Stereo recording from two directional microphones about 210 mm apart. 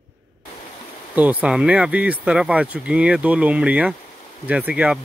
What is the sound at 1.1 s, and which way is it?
Speech, 5° right (ahead or behind).